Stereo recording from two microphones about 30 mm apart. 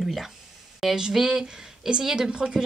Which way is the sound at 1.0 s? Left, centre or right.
Centre.